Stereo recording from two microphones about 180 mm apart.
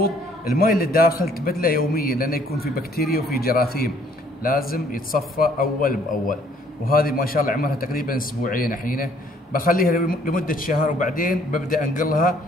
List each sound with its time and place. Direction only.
0.0 s a man's voice: 55° left (ahead or behind)